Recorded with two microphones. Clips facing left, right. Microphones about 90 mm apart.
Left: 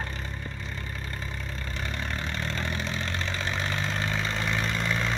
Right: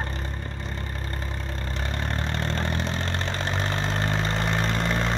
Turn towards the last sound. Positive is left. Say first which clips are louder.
# right 3 dB
turn(degrees=-40)  # may be behind; listen again after turning